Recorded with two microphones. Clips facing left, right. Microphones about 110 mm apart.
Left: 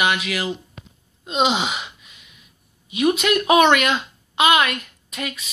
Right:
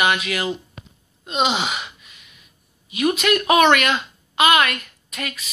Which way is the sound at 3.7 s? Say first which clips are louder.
Even; 20° left (ahead or behind).